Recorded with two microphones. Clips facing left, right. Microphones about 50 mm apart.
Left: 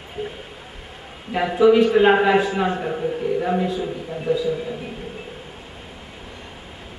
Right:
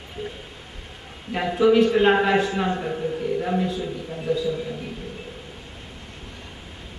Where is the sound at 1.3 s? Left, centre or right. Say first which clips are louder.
Left 3 dB; centre.